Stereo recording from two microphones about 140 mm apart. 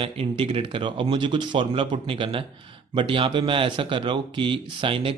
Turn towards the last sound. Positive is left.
turn(degrees=-40)  # may be behind; listen again after turning